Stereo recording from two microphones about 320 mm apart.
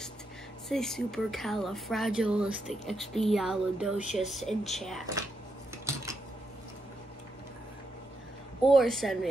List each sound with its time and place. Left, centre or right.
0.7 s speech: centre
5.9 s dishes: centre
8.6 s speech: centre